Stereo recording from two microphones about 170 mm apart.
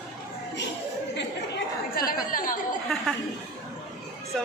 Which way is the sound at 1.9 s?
55° left (ahead or behind).